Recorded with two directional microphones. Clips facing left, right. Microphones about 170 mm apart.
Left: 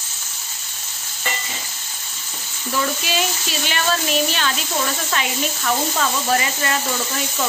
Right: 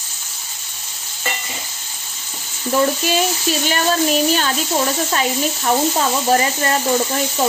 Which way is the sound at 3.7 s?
40° right (ahead or behind).